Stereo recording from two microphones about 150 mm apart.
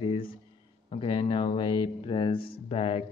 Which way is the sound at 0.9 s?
35° left (ahead or behind).